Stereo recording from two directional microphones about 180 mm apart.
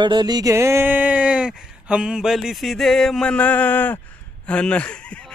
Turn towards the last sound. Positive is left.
turn(degrees=5)  # may be behind; listen again after turning